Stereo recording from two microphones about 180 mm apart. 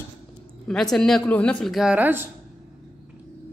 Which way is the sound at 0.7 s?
5° left (ahead or behind).